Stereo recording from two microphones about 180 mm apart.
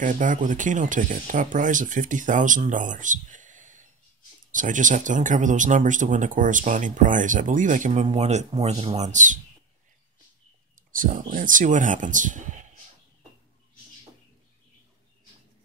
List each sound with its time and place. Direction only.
0.0 s speech: 45° right (ahead or behind)
10.9 s speech: 45° right (ahead or behind)